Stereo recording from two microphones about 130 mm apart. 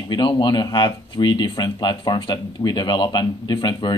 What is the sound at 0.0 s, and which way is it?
Speech, 35° left (ahead or behind).